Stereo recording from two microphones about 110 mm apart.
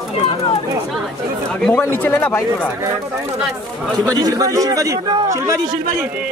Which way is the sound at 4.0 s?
35° right (ahead or behind).